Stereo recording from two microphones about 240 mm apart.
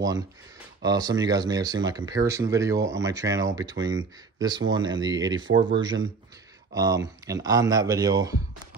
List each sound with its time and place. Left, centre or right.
0.8 s speech: centre